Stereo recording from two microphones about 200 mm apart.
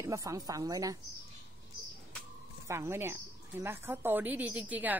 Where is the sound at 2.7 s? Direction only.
15° right (ahead or behind).